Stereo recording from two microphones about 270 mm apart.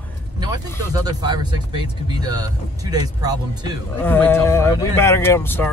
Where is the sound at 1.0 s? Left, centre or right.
Centre.